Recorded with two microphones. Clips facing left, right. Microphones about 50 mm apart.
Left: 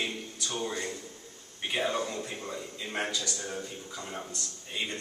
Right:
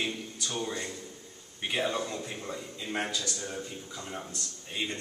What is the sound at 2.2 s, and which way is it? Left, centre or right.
Speech, centre.